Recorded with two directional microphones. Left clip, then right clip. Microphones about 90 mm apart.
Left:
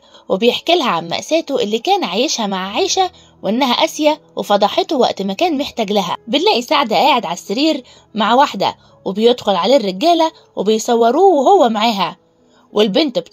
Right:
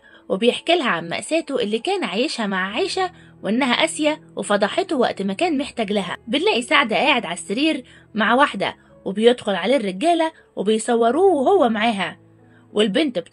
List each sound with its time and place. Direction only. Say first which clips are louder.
0.3 s speech: left 5 dB; 50° left (ahead or behind)
2.5 s speech: left 3 dB; 50° left (ahead or behind)
2.8 s speech: left 7 dB; 40° left (ahead or behind)
3.9 s speech: left 6 dB; 40° left (ahead or behind); by 12.2 s 65° left (ahead or behind)
12.7 s speech: left 5 dB; 45° left (ahead or behind)